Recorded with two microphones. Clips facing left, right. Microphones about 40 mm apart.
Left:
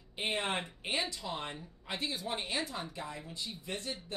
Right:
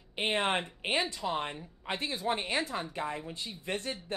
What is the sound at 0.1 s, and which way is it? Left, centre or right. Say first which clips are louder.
Speech: right 5 dB; right.